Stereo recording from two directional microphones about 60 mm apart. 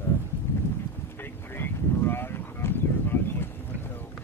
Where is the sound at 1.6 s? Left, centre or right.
Left.